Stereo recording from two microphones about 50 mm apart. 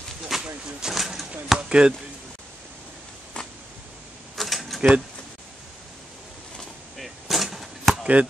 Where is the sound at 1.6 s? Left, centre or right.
Centre.